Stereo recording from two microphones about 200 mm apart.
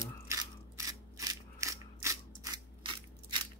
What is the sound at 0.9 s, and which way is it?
Scissors, 15° right (ahead or behind).